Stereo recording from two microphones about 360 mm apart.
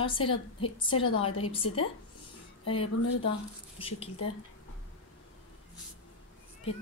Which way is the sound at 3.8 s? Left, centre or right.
Centre.